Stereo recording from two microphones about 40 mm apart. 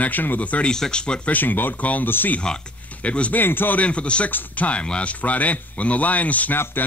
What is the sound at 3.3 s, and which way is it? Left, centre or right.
Speech, left.